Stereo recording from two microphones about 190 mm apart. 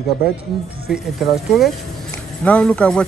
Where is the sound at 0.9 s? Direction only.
Centre (ahead or behind).